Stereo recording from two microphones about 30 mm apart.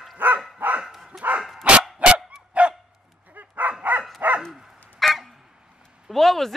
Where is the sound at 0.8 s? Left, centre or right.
Centre.